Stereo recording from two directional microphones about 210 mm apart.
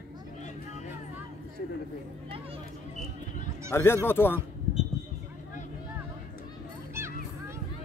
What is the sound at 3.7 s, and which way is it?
Speech, 15° left (ahead or behind).